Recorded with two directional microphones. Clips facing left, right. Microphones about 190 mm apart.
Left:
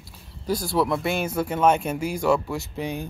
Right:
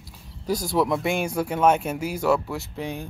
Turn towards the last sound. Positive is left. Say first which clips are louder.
# left 2 dB
turn(degrees=0)  # may be behind; listen again after turning